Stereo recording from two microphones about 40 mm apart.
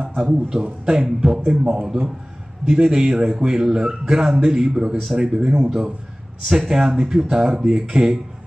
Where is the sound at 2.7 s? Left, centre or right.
Centre.